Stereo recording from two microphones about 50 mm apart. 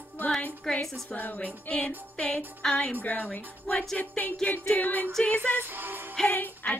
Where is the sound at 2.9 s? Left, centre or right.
Left.